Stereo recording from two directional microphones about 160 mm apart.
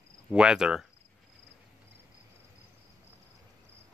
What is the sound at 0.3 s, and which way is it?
Speech, 5° right (ahead or behind).